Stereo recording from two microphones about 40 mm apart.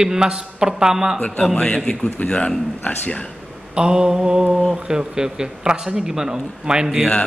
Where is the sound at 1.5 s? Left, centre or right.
Left.